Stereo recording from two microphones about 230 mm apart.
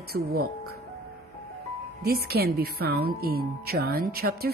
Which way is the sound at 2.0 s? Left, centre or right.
Right.